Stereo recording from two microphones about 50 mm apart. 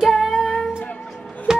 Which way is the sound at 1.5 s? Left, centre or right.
Centre.